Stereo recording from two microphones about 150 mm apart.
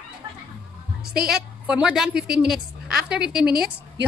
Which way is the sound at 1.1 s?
5° right (ahead or behind).